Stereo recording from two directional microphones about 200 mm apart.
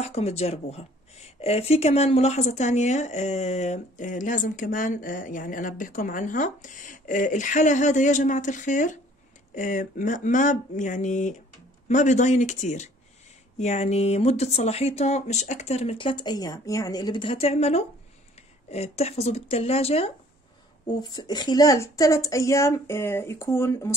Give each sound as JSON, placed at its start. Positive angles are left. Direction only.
{"t": 0.0, "sound": "speech", "side_deg": 30}